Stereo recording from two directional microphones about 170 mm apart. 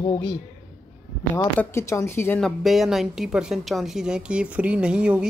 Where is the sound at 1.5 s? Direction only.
15° left (ahead or behind).